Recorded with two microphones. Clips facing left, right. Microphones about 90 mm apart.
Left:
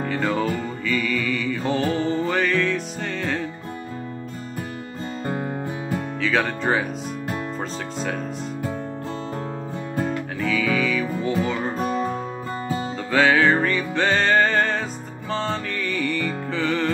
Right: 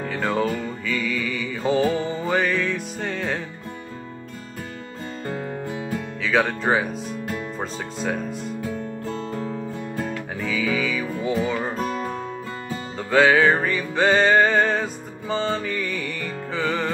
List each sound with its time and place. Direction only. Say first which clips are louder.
0.0 s music: even; centre (ahead or behind)
5.2 s music: left 2 dB; 30° left (ahead or behind)
6.2 s speech: right 2 dB; 5° right (ahead or behind)
10.4 s music: left 2 dB; 5° right (ahead or behind)
13.1 s music: right 1 dB; centre (ahead or behind)